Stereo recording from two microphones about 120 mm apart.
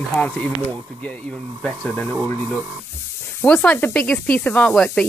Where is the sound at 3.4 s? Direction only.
10° left (ahead or behind).